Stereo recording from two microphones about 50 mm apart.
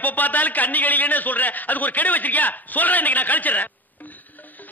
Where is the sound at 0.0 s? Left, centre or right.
Left.